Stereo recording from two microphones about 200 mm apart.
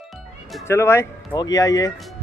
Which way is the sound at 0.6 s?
15° left (ahead or behind).